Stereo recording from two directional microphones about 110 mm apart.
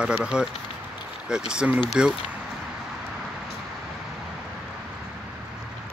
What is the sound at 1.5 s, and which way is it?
Speech, 10° right (ahead or behind).